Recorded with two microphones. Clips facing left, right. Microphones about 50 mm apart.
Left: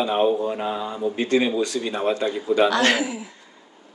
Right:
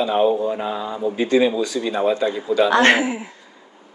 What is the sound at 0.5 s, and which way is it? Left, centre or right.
Mantra, centre.